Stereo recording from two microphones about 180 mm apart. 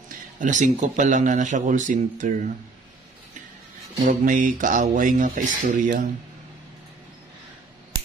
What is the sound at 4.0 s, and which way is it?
Speech, 50° right (ahead or behind).